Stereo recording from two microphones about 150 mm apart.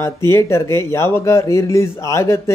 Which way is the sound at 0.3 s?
20° left (ahead or behind).